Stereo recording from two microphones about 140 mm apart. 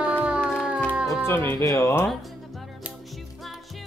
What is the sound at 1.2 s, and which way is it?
Music, 15° left (ahead or behind).